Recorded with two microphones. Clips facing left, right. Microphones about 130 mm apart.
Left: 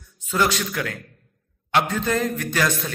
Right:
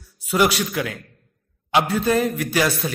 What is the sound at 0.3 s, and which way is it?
A man's voice, 10° right (ahead or behind).